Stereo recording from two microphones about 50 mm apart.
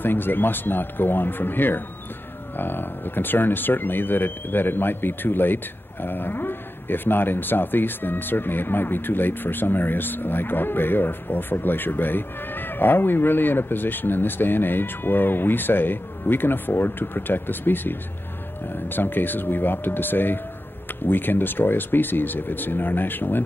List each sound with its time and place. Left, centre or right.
0.0 s speech: left